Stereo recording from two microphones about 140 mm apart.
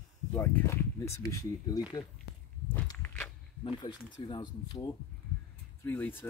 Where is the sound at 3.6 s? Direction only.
35° left (ahead or behind).